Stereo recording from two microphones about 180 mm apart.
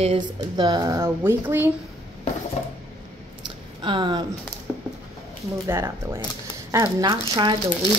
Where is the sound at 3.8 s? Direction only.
25° right (ahead or behind).